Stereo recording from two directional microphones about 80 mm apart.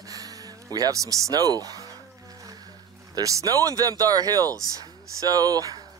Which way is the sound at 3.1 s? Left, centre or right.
Right.